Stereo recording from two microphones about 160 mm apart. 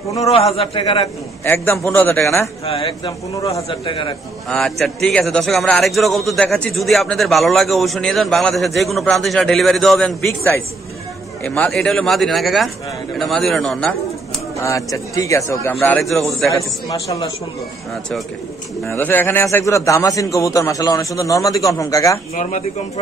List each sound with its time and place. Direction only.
0.2 s a man's voice: 40° left (ahead or behind)
1.4 s a man's voice: 15° left (ahead or behind)
2.6 s a man's voice: 35° left (ahead or behind)
3.3 s a man's voice: 20° left (ahead or behind)
3.8 s a man's voice: 30° left (ahead or behind)
4.5 s a man's voice: centre (ahead or behind)
14.6 s a man's voice: 20° left (ahead or behind)
16.0 s a man's voice: centre (ahead or behind)
16.4 s a man's voice: 20° left (ahead or behind)
18.9 s a man's voice: 10° left (ahead or behind)
22.3 s speech: 50° left (ahead or behind)